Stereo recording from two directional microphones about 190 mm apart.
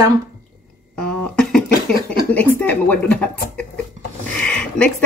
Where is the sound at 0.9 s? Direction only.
5° left (ahead or behind).